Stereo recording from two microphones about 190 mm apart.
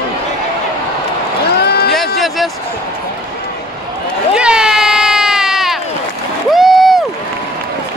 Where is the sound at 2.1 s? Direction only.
Centre (ahead or behind).